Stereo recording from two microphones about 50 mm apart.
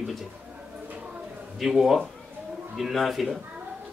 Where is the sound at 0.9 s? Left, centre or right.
Right.